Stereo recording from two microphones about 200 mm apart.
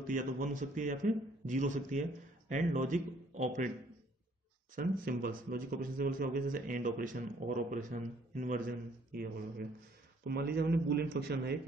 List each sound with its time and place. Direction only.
0.0 s a man's voice: 40° right (ahead or behind)
4.7 s a man's voice: 45° right (ahead or behind)